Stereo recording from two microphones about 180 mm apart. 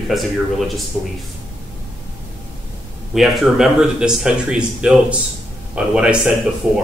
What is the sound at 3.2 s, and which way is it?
Speech, 5° right (ahead or behind).